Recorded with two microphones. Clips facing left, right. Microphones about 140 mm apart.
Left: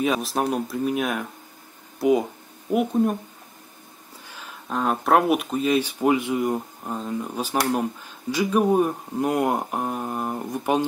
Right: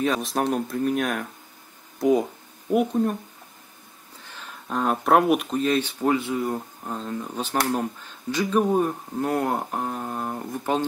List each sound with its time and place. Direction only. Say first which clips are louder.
0.0 s speech: left 1 dB; 5° left (ahead or behind)
4.3 s speech: even; 5° left (ahead or behind)